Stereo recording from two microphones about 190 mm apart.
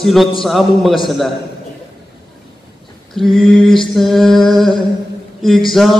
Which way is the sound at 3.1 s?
Centre (ahead or behind).